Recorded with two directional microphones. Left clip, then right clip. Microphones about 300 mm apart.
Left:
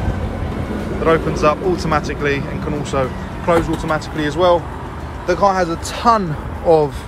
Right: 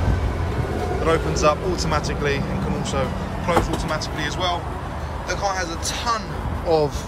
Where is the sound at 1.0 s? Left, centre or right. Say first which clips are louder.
Left 5 dB; centre.